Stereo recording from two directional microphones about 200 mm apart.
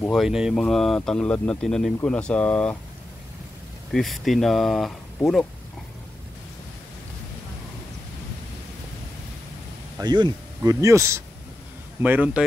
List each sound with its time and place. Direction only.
0.0 s speech: centre (ahead or behind)
3.9 s speech: centre (ahead or behind)
9.9 s speech: 20° right (ahead or behind)